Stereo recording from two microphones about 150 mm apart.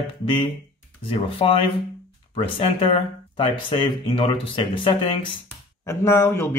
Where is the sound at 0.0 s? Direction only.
35° left (ahead or behind).